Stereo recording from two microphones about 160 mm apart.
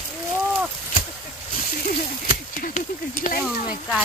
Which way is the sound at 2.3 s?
55° left (ahead or behind).